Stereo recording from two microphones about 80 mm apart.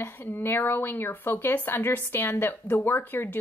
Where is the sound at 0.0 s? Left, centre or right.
Left.